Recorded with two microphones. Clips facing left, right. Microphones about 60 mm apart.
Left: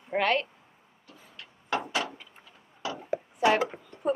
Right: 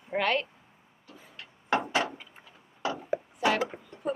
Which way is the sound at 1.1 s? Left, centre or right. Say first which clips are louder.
Right 1 dB; right.